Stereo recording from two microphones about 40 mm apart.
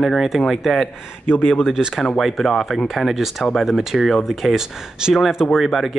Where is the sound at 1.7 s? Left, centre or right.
Centre.